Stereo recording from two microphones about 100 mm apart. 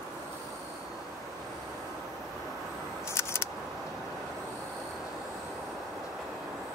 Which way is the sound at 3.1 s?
25° left (ahead or behind).